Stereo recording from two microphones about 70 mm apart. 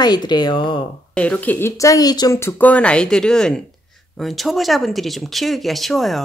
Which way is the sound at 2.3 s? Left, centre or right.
Left.